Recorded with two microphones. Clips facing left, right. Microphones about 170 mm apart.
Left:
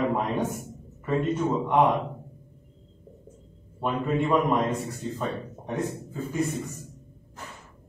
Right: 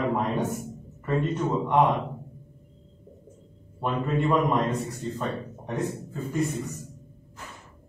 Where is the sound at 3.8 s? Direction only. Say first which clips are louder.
Even; 5° left (ahead or behind).